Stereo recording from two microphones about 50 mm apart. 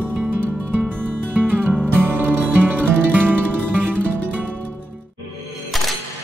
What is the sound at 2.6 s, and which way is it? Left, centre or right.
Music, right.